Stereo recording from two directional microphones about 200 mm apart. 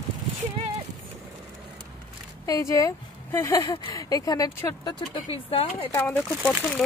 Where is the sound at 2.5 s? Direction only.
15° left (ahead or behind).